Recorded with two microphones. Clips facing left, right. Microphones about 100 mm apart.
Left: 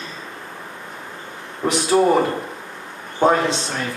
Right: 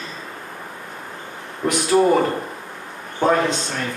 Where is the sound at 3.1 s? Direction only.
25° left (ahead or behind).